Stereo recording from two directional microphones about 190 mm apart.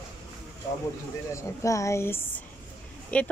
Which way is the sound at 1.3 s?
15° left (ahead or behind).